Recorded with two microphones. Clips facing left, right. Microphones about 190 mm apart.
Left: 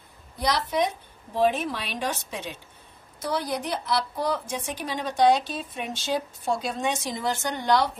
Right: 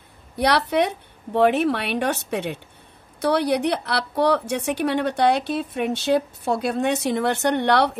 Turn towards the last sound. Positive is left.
turn(degrees=-65)  # may be behind; listen again after turning